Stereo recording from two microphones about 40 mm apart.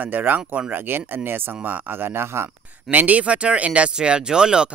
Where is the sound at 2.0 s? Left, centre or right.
Right.